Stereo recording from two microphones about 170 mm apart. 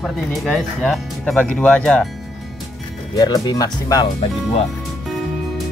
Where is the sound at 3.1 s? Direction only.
25° left (ahead or behind).